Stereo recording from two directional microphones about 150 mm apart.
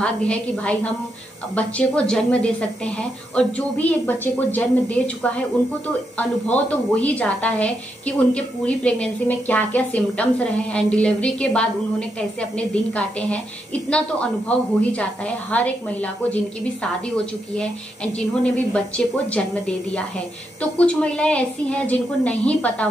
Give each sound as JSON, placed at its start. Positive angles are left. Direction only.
{"t": 0.0, "sound": "a woman's voice", "side_deg": 5}
{"t": 17.6, "sound": "a woman's voice", "side_deg": 5}